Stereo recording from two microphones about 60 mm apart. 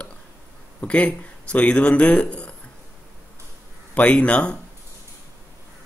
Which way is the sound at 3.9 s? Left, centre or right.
Left.